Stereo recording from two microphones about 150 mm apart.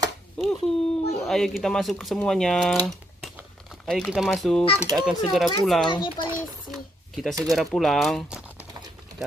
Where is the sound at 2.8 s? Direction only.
5° left (ahead or behind).